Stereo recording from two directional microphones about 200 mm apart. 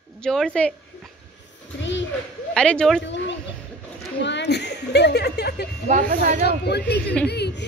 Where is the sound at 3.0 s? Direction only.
65° left (ahead or behind).